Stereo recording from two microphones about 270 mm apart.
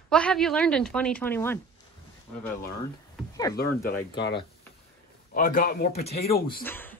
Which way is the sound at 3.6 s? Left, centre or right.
Left.